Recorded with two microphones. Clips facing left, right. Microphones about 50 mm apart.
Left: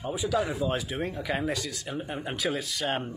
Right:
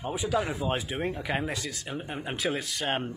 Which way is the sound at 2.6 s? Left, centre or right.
Right.